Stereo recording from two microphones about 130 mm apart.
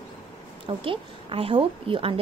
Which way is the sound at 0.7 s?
45° right (ahead or behind).